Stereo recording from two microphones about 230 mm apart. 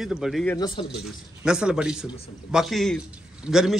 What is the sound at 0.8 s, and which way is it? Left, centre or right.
Speech, left.